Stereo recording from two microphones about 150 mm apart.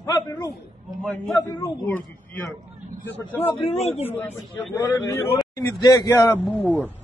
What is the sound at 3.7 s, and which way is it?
Speech, 45° left (ahead or behind).